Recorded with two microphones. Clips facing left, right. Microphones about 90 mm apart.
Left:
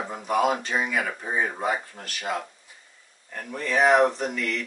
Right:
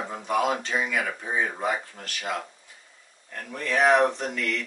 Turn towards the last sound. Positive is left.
turn(degrees=5)  # may be behind; listen again after turning